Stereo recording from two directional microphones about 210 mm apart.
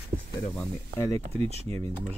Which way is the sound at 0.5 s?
15° left (ahead or behind).